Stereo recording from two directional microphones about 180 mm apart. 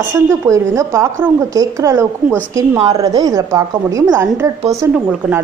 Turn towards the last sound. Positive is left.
turn(degrees=-5)  # may be behind; listen again after turning